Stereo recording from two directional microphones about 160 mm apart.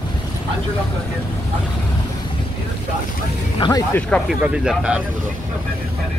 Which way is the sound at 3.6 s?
20° left (ahead or behind).